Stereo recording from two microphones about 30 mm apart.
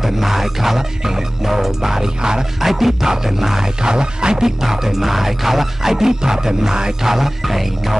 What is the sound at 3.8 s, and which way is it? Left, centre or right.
Music, right.